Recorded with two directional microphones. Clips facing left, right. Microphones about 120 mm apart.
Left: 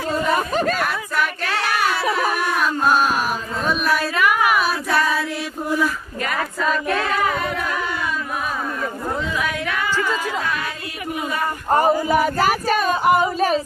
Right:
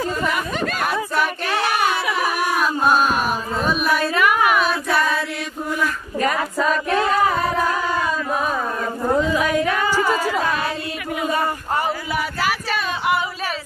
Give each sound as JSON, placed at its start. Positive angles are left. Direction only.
{"t": 0.3, "sound": "chatter", "side_deg": 40}
{"t": 1.1, "sound": "a sound", "side_deg": -25}
{"t": 2.5, "sound": "music", "side_deg": -5}
{"t": 3.6, "sound": "female singing", "side_deg": 0}
{"t": 6.2, "sound": "singing", "side_deg": -30}
{"t": 9.2, "sound": "a sound", "side_deg": -40}
{"t": 12.1, "sound": "singing", "side_deg": 45}